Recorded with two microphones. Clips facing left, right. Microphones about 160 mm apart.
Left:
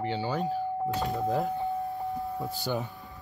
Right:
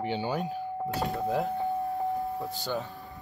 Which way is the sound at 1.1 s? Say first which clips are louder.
Even; centre (ahead or behind).